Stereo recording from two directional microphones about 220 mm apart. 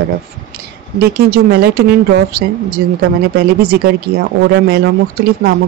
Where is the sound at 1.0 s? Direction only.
45° right (ahead or behind).